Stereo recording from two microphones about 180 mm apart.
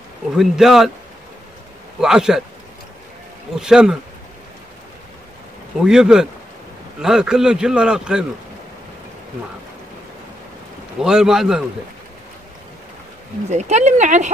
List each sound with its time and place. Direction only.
0.4 s a man's voice: centre (ahead or behind)
2.0 s a man's voice: 5° right (ahead or behind)
3.5 s a man's voice: 5° right (ahead or behind)
5.8 s a man's voice: 5° right (ahead or behind)
11.0 s a man's voice: 5° right (ahead or behind)
13.5 s speech: 40° right (ahead or behind)